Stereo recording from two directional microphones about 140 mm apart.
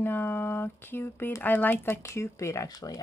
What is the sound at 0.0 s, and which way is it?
Speech, 15° left (ahead or behind).